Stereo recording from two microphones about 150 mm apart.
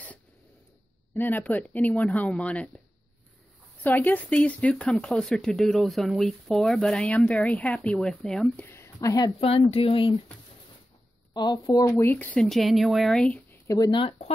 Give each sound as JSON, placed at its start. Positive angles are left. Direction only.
{"t": 1.1, "sound": "speech", "side_deg": 10}
{"t": 3.8, "sound": "speech", "side_deg": 10}
{"t": 8.6, "sound": "a sound", "side_deg": 20}
{"t": 9.4, "sound": "a woman's voice", "side_deg": 40}
{"t": 11.3, "sound": "speech", "side_deg": 25}
{"t": 13.7, "sound": "a woman's voice", "side_deg": 25}